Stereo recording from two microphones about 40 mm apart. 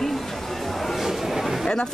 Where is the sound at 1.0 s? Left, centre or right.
Centre.